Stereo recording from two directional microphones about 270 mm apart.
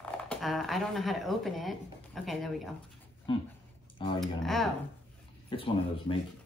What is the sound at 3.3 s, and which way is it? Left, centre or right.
Speech, centre.